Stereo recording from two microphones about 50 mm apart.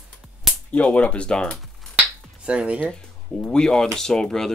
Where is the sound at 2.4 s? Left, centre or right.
Right.